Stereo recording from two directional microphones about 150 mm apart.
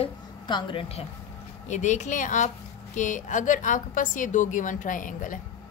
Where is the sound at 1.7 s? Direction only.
55° left (ahead or behind).